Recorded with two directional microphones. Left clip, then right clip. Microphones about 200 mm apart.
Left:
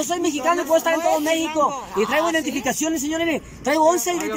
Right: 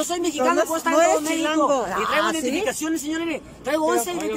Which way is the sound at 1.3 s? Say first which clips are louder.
Even; 25° left (ahead or behind).